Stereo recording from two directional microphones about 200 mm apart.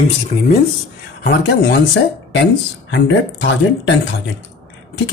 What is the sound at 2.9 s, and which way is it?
Speech, 65° left (ahead or behind).